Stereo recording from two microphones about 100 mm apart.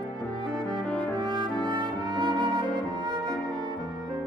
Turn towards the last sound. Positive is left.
turn(degrees=-45)  # may be behind; listen again after turning